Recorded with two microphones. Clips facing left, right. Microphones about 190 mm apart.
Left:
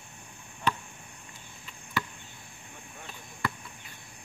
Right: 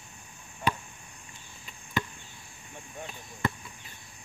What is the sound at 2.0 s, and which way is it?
Chop, 20° right (ahead or behind).